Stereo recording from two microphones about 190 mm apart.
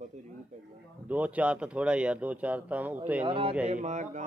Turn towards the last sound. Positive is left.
turn(degrees=-40)  # may be behind; listen again after turning